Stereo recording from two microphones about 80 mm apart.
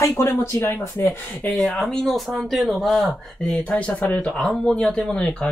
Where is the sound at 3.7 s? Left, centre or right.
Centre.